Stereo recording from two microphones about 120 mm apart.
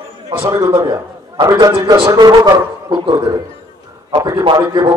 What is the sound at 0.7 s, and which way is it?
A man's voice, 35° right (ahead or behind).